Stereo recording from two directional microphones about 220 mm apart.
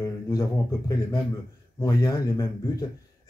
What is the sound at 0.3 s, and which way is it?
Speech, 15° left (ahead or behind).